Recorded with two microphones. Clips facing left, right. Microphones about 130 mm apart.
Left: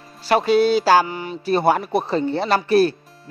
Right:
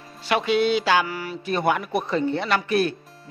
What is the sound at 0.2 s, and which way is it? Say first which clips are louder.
Speech: left 5 dB; 40° left (ahead or behind).